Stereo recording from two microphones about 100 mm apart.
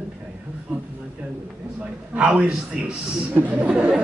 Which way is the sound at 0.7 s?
15° right (ahead or behind).